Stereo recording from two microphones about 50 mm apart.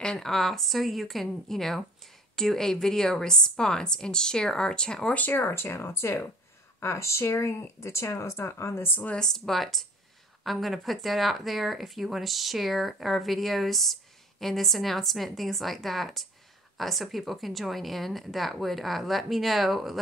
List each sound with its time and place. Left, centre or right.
0.2 s a woman's voice: centre
5.3 s speech: left
6.8 s speech: left
8.5 s speech: left
9.1 s speech: centre